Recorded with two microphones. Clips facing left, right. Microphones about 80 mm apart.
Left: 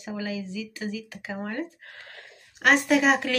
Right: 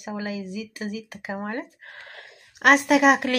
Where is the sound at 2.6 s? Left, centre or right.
Right.